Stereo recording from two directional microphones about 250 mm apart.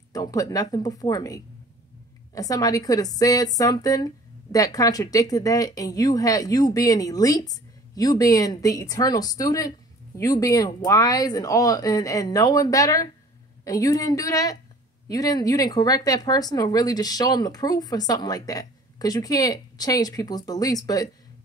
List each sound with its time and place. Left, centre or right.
0.1 s a woman's voice: centre